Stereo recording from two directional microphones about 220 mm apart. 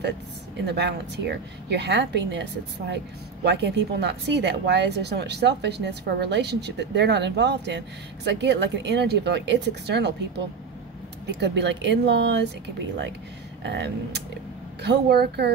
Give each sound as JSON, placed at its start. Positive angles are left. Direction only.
{"t": 0.7, "sound": "speech", "side_deg": -50}
{"t": 3.4, "sound": "speech", "side_deg": -50}
{"t": 13.6, "sound": "speech", "side_deg": -50}